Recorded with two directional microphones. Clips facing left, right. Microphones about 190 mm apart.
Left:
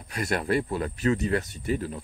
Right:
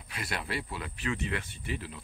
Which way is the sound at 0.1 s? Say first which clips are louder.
Left 10 dB; 45° left (ahead or behind).